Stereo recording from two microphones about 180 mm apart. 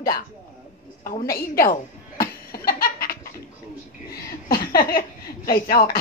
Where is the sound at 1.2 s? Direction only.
55° left (ahead or behind).